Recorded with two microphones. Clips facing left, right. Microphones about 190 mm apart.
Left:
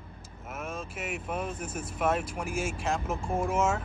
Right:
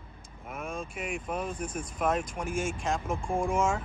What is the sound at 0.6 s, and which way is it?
Speech, 5° left (ahead or behind).